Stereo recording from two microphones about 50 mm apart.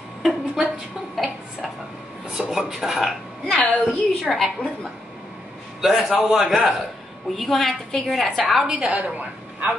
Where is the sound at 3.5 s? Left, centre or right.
Right.